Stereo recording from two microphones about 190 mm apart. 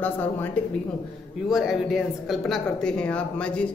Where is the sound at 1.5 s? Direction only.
Centre (ahead or behind).